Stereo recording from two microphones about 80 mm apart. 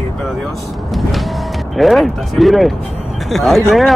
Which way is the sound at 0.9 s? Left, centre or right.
Centre.